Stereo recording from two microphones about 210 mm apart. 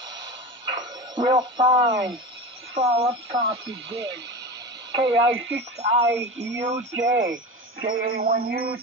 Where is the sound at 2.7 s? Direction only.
25° right (ahead or behind).